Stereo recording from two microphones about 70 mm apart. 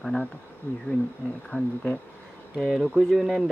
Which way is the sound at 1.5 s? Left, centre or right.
Left.